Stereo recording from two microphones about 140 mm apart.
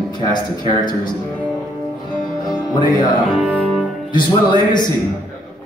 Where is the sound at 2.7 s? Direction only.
30° left (ahead or behind).